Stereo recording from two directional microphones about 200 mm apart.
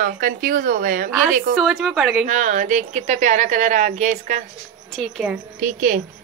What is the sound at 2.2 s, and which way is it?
Speech, 35° right (ahead or behind).